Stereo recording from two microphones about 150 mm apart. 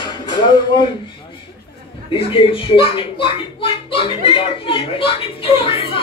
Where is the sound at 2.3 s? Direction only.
35° left (ahead or behind).